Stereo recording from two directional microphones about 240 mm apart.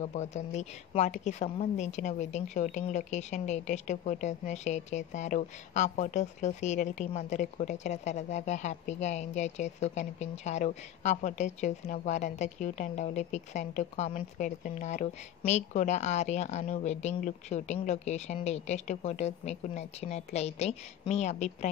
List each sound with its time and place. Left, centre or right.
0.0 s a woman's voice: left